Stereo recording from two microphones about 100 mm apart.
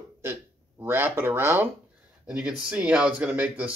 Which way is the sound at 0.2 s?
20° right (ahead or behind).